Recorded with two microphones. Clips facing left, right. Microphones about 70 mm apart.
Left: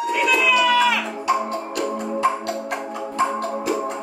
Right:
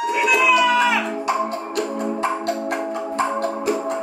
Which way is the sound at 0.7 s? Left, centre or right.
Centre.